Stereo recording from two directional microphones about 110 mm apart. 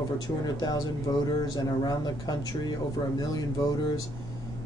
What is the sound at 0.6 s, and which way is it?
Speech, 40° left (ahead or behind).